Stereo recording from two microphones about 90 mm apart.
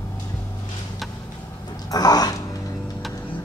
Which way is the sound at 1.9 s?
45° left (ahead or behind).